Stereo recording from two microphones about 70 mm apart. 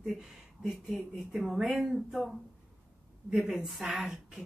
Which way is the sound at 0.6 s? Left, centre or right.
Centre.